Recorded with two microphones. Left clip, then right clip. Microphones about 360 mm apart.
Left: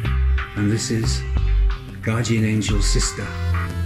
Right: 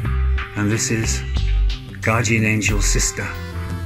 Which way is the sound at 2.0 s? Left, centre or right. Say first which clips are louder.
Right 6 dB; centre.